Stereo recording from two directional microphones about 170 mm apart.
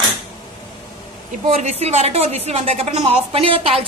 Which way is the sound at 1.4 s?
40° right (ahead or behind).